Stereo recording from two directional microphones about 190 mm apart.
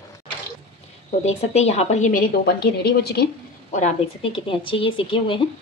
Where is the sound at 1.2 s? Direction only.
35° left (ahead or behind).